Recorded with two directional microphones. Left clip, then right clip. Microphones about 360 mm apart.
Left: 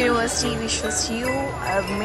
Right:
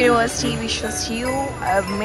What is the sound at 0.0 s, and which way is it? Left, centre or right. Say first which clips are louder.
Speech: right 4 dB; centre.